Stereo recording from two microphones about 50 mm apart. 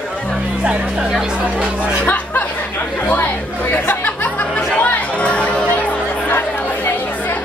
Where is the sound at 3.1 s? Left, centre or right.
Left.